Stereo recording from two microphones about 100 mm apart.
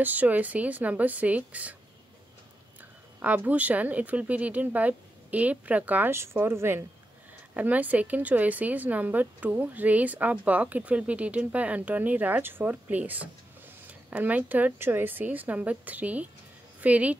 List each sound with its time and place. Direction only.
0.0 s a woman's voice: 15° right (ahead or behind)
3.2 s a woman's voice: 15° right (ahead or behind)